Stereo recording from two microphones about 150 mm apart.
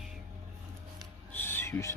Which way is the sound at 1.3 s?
15° left (ahead or behind).